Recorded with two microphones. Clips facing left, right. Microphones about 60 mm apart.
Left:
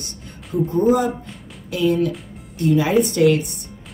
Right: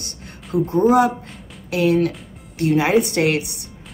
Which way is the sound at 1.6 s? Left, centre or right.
Right.